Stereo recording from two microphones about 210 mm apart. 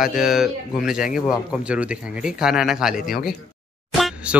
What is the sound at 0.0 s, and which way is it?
Speech, centre (ahead or behind).